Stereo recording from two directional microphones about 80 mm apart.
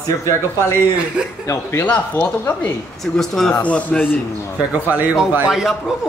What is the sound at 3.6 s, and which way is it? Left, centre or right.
Speech, centre.